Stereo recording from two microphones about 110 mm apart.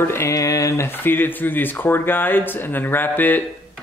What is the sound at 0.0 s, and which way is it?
Speech, 25° left (ahead or behind).